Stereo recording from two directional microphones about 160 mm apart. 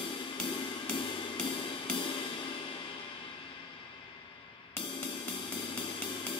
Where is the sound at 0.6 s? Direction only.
30° left (ahead or behind).